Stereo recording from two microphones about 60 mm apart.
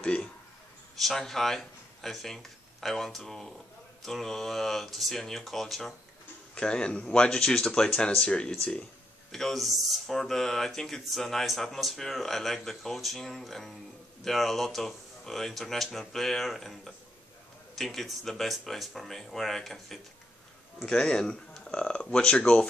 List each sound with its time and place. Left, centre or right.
0.0 s a man's voice: centre
0.9 s speech: centre
6.5 s speech: centre
9.3 s speech: centre
20.8 s speech: centre